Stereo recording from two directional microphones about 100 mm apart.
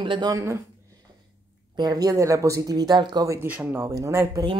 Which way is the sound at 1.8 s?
40° right (ahead or behind).